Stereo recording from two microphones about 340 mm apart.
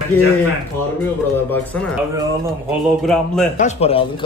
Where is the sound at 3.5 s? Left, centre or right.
Left.